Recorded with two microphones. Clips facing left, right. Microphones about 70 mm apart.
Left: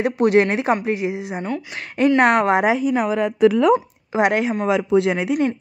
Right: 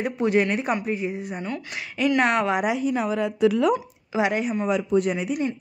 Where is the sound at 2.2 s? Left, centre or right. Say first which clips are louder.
Left 6 dB; left.